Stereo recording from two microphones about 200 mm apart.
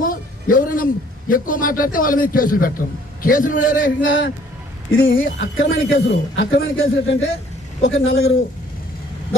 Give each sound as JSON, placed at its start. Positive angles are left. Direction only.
{"t": 0.0, "sound": "a sound", "side_deg": 45}
{"t": 1.3, "sound": "a man's voice", "side_deg": 45}
{"t": 4.0, "sound": "a man's voice", "side_deg": 65}